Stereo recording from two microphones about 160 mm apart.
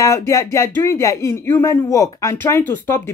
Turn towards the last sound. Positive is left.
turn(degrees=15)  # may be behind; listen again after turning